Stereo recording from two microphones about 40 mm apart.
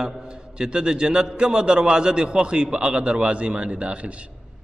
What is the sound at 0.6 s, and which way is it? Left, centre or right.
A man's voice, right.